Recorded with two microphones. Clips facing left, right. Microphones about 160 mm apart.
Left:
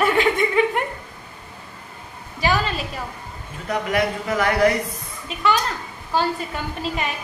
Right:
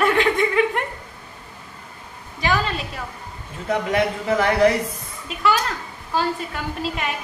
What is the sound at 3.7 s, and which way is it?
Speech, 25° right (ahead or behind).